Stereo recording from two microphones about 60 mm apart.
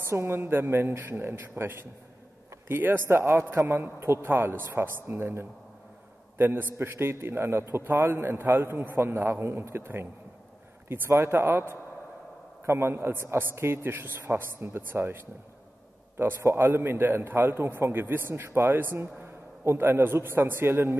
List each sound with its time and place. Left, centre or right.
0.0 s a man's voice: right
2.7 s a man's voice: right
11.1 s a man's voice: right
16.2 s a man's voice: right